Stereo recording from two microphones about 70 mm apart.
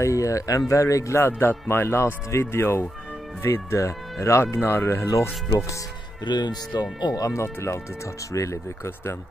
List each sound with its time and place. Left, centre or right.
0.0 s speech: left
6.2 s speech: left
7.4 s speech: left